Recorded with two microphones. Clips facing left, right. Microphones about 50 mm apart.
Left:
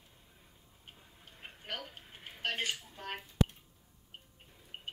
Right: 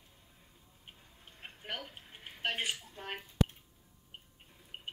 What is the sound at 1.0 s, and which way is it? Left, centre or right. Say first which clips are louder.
Tick-tock: even; centre.